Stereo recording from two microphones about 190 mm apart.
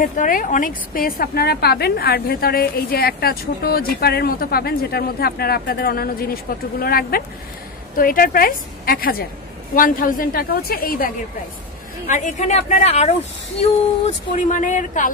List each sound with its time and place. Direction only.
0.0 s a woman's voice: 45° left (ahead or behind)
12.1 s a woman's voice: 40° left (ahead or behind)